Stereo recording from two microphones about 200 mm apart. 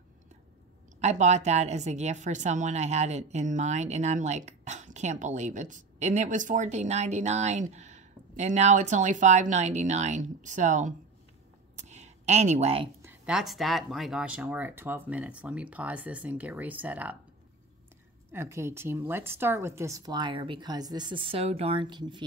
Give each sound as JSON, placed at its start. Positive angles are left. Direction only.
{"t": 1.0, "sound": "a woman's voice", "side_deg": -35}
{"t": 11.8, "sound": "a sound", "side_deg": -35}
{"t": 13.0, "sound": "speech", "side_deg": -5}
{"t": 18.3, "sound": "speech", "side_deg": -15}